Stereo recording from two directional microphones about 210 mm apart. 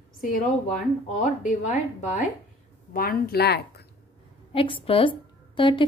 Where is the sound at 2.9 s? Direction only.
45° left (ahead or behind).